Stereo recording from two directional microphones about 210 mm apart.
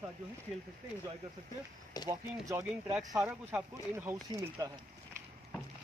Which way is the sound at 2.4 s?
15° right (ahead or behind).